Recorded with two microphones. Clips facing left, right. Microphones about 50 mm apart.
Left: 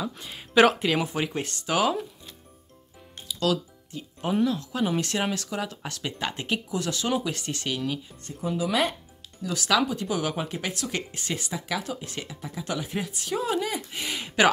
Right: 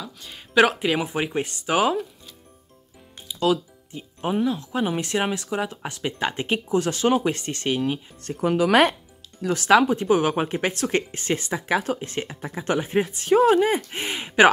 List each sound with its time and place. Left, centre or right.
0.2 s speech: centre
3.3 s music: right
4.4 s speech: centre
8.2 s speech: right
9.5 s speech: right